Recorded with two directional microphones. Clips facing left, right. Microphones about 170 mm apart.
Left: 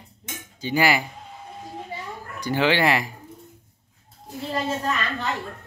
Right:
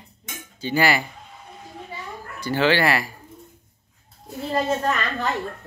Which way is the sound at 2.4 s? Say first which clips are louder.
Right 1 dB; 15° left (ahead or behind).